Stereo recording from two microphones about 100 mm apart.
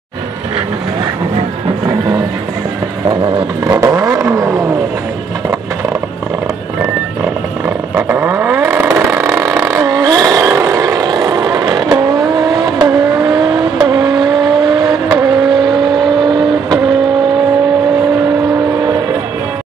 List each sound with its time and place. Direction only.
3.6 s vehicle: 35° right (ahead or behind)
7.9 s vehicle: 20° right (ahead or behind); by 16.3 s 50° right (ahead or behind)